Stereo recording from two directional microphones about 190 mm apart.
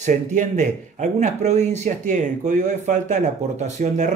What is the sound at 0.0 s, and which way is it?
Speech, 40° right (ahead or behind).